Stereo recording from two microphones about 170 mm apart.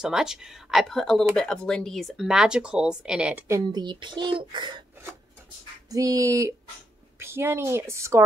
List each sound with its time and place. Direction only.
0.0 s speech: 5° right (ahead or behind)
3.4 s speech: 20° right (ahead or behind)
5.9 s a woman's voice: 20° right (ahead or behind)